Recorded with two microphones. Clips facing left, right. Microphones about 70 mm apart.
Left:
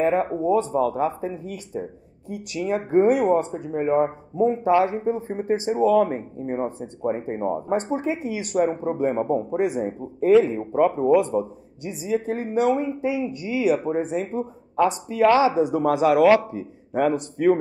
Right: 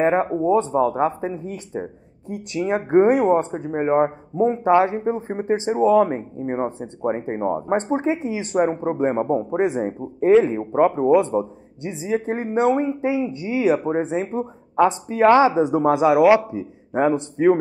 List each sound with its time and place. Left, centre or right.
0.0 s speech: right